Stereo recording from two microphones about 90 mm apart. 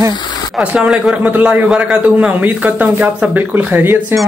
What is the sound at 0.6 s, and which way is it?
A man's voice, 15° right (ahead or behind).